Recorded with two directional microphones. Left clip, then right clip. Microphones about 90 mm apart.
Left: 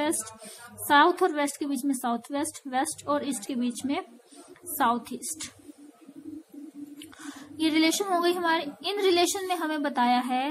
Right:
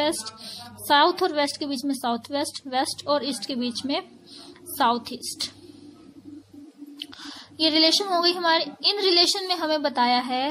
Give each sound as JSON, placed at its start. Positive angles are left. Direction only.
{"t": 0.8, "sound": "speech", "side_deg": -20}
{"t": 7.2, "sound": "a woman's voice", "side_deg": -20}